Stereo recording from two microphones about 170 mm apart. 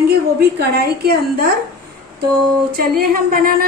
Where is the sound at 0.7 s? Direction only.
65° right (ahead or behind).